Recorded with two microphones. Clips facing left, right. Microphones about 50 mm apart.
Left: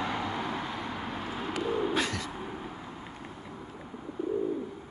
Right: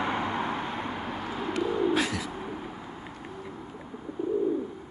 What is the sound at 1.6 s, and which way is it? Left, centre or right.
Bird, centre.